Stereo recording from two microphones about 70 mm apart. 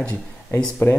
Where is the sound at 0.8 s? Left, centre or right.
Left.